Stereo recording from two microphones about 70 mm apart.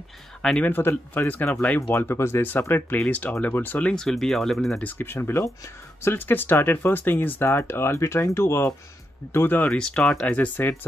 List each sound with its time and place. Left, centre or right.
0.4 s speech: centre
0.7 s speech: left
3.9 s speech: centre
4.8 s speech: left
9.7 s speech: centre